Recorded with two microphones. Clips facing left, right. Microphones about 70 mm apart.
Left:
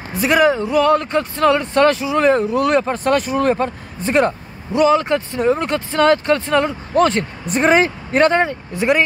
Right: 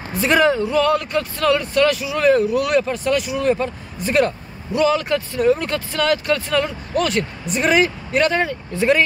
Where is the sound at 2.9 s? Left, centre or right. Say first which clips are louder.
Left 3 dB; left.